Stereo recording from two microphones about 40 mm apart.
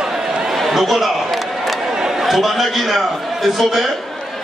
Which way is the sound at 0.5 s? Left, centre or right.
Centre.